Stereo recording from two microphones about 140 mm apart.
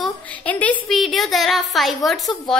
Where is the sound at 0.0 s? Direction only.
10° left (ahead or behind).